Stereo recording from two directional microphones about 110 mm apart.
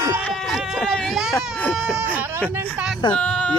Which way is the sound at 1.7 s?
10° right (ahead or behind).